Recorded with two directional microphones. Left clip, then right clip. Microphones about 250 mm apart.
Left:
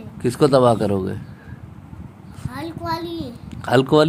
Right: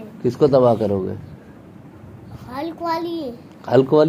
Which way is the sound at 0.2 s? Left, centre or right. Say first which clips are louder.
Even; left.